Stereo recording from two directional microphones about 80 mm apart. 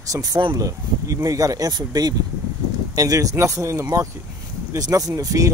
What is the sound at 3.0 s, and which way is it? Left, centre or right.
Speech, right.